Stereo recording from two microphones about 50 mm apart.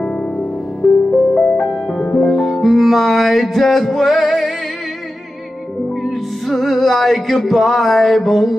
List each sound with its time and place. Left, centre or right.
0.0 s music: left
0.8 s music: centre
6.0 s music: centre